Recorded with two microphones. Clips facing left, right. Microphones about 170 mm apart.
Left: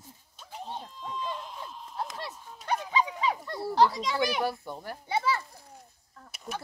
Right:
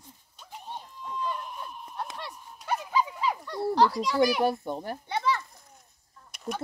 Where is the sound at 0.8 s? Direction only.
90° left.